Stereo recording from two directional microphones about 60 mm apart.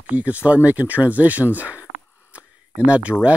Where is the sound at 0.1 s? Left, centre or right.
Right.